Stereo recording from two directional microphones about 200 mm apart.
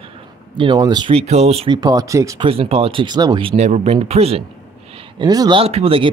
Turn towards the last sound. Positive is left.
turn(degrees=-30)  # may be behind; listen again after turning